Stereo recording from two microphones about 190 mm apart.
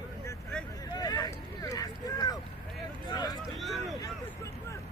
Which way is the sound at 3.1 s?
20° left (ahead or behind).